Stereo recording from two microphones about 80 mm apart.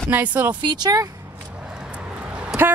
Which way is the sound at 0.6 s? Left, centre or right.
Right.